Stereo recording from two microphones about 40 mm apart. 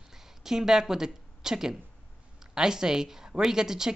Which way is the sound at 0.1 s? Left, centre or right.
Centre.